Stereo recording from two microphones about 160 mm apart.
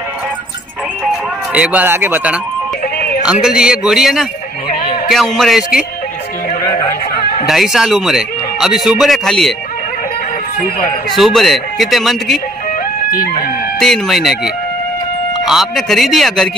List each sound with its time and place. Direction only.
1.5 s speech: 10° right (ahead or behind)
7.4 s speech: centre (ahead or behind)
11.1 s speech: centre (ahead or behind)
13.1 s speech: 65° left (ahead or behind)
13.7 s speech: centre (ahead or behind)